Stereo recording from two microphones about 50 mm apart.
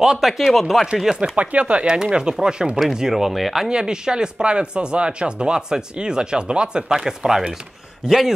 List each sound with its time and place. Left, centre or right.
0.0 s speech: centre
1.3 s speech: right
2.8 s speech: centre
3.6 s speech: centre